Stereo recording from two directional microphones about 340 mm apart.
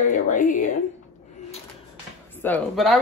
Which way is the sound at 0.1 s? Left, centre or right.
Left.